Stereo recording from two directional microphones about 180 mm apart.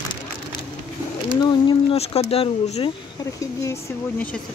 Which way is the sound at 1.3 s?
25° left (ahead or behind).